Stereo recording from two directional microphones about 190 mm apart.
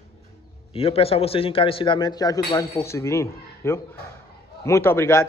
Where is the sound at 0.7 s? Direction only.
30° left (ahead or behind).